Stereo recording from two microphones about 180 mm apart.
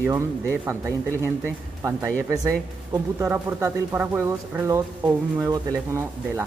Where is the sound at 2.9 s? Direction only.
15° right (ahead or behind).